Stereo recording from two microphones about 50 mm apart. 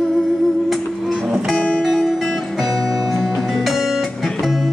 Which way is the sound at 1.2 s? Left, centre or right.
Centre.